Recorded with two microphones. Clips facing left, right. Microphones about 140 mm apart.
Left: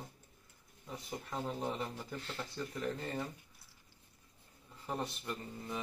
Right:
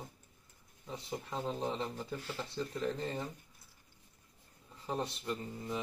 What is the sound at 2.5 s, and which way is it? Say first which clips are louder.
Speech: right 3 dB; 25° right (ahead or behind).